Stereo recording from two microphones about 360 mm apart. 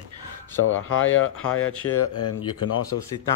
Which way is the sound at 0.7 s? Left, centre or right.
Left.